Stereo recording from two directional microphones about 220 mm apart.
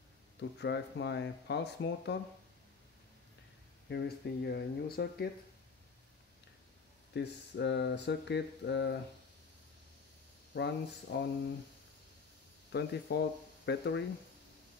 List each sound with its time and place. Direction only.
0.4 s speech: 50° left (ahead or behind)
3.9 s speech: 50° left (ahead or behind)
7.2 s speech: 50° left (ahead or behind)
10.5 s speech: 50° left (ahead or behind)
12.7 s speech: 50° left (ahead or behind)